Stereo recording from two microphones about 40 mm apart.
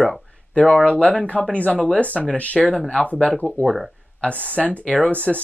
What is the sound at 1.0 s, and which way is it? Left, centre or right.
Speech, left.